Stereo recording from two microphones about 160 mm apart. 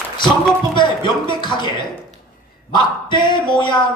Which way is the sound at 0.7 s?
30° left (ahead or behind).